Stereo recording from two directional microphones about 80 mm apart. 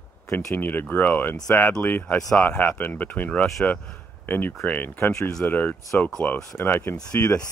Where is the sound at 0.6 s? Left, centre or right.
Left.